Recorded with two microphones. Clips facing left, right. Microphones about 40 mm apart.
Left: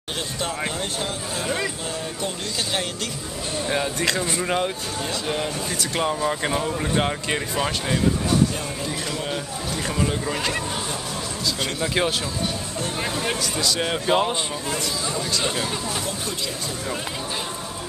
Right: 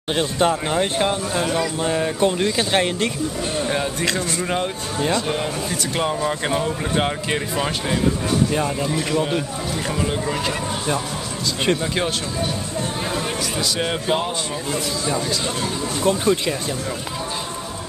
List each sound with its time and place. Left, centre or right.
0.1 s speech: right
3.6 s speech: centre
11.8 s speech: centre
13.1 s speech: centre
16.1 s speech: right